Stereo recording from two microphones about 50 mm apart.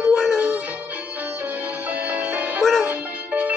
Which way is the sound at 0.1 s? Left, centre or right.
Centre.